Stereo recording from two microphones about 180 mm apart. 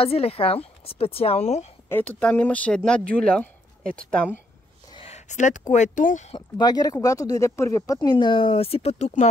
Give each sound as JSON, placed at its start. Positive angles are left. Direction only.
{"t": 0.0, "sound": "a woman's voice", "side_deg": 30}
{"t": 1.9, "sound": "speech", "side_deg": 10}
{"t": 4.9, "sound": "speech", "side_deg": 35}
{"t": 6.3, "sound": "speech", "side_deg": 20}